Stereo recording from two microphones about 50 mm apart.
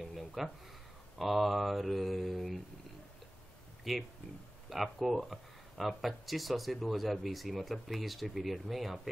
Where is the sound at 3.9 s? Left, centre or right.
Centre.